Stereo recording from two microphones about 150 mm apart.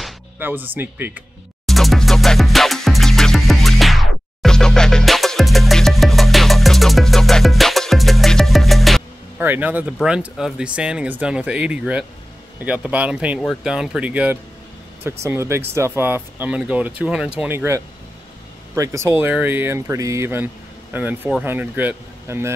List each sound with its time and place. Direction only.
0.4 s speech: 15° right (ahead or behind)
1.7 s music: centre (ahead or behind)
9.4 s speech: 10° right (ahead or behind)